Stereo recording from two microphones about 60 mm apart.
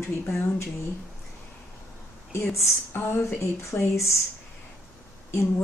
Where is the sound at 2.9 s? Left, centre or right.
Left.